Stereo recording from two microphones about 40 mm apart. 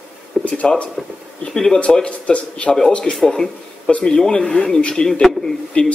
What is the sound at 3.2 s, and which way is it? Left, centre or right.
Speech, centre.